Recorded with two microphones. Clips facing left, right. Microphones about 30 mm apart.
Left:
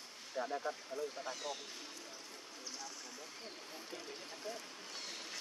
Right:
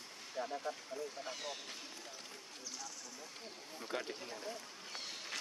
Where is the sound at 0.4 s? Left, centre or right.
Centre.